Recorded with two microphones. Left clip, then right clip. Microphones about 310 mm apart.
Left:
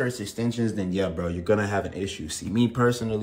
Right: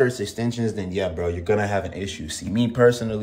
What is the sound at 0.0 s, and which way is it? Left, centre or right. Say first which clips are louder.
Speech: right 6 dB; centre.